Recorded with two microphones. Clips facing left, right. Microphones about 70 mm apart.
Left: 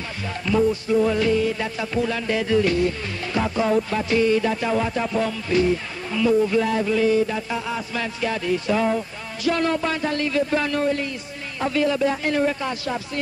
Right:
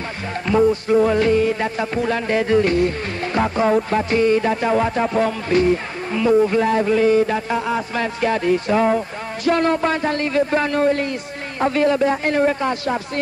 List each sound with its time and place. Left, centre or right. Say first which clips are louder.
0.5 s music: right 4 dB; right